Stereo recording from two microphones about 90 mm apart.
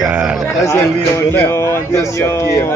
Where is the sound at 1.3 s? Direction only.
25° left (ahead or behind).